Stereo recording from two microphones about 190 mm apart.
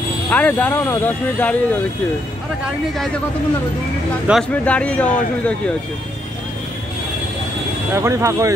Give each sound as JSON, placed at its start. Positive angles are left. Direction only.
{"t": 0.3, "sound": "speech", "side_deg": 10}
{"t": 4.3, "sound": "speech", "side_deg": 5}
{"t": 7.9, "sound": "speech", "side_deg": -15}